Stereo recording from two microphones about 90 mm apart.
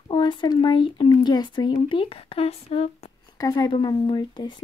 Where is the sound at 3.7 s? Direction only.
65° left (ahead or behind).